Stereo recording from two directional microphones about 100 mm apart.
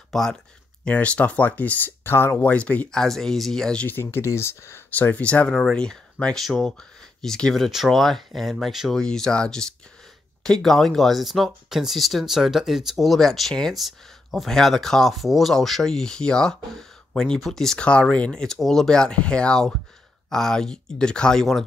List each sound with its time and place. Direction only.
0.1 s speech: 5° left (ahead or behind); by 2.3 s 25° left (ahead or behind)
2.3 s speech: 10° left (ahead or behind)
3.8 s speech: 20° left (ahead or behind); by 21.6 s 5° left (ahead or behind)